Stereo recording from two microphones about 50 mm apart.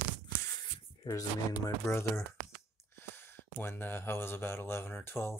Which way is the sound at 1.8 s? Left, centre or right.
Left.